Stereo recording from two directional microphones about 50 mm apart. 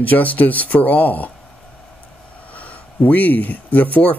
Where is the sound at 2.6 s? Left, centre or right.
Left.